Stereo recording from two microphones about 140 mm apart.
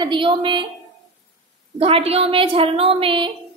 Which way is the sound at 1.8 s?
40° right (ahead or behind).